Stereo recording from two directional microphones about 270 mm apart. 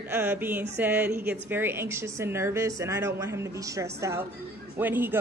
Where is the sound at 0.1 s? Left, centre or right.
Centre.